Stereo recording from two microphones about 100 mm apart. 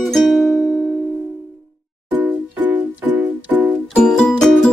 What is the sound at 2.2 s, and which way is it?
Music, 15° right (ahead or behind).